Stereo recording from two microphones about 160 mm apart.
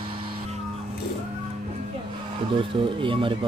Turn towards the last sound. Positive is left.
turn(degrees=-30)  # may be behind; listen again after turning